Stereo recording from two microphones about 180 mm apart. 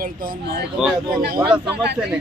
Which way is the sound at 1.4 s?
5° right (ahead or behind).